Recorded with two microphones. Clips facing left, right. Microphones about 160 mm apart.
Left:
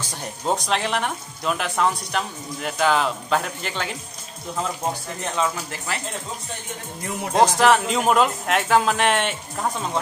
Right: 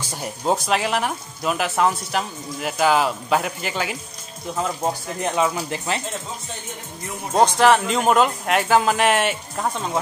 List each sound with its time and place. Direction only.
0.1 s speech: 5° right (ahead or behind)
5.2 s speech: 15° right (ahead or behind)
7.3 s speech: centre (ahead or behind)